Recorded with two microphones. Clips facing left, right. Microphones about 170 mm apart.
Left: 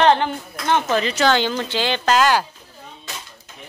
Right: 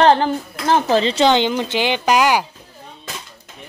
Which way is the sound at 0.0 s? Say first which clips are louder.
Right 3 dB; 35° right (ahead or behind).